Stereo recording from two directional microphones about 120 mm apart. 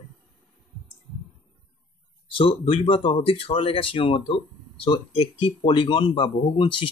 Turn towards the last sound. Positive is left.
turn(degrees=45)  # may be behind; listen again after turning